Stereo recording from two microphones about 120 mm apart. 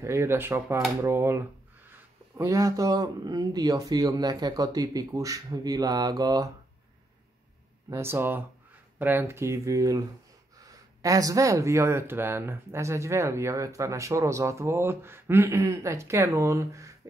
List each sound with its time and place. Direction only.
0.0 s speech: 20° right (ahead or behind)
7.9 s speech: 20° right (ahead or behind)